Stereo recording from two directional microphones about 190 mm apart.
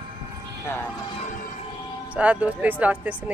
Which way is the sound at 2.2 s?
5° right (ahead or behind).